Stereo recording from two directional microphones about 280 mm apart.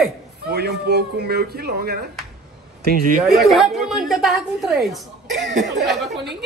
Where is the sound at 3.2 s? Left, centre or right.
Centre.